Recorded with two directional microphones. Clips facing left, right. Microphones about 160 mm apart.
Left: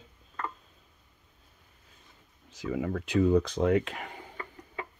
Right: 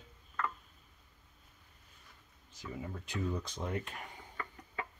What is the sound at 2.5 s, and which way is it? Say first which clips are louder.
Speech: left 12 dB; 90° left.